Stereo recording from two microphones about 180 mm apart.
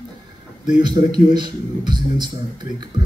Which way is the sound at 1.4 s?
25° right (ahead or behind).